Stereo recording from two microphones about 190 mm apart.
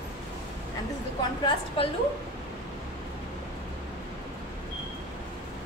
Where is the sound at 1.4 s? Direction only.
30° left (ahead or behind).